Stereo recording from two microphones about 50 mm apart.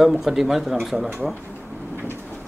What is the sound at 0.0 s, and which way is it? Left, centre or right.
Speech, centre.